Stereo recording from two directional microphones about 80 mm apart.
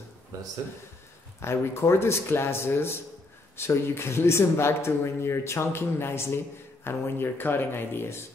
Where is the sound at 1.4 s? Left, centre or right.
Left.